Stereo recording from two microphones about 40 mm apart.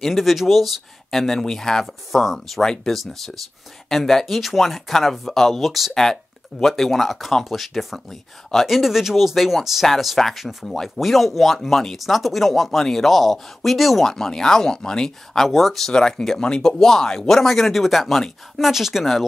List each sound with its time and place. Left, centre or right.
0.0 s speech: centre
1.1 s speech: centre
2.6 s speech: centre
2.9 s speech: centre
5.6 s speech: centre
8.6 s speech: centre
15.4 s speech: centre
15.9 s speech: centre